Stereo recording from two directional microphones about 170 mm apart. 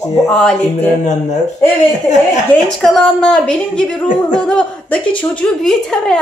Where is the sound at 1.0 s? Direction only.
45° left (ahead or behind).